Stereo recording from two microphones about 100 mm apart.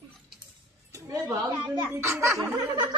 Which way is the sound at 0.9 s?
30° right (ahead or behind).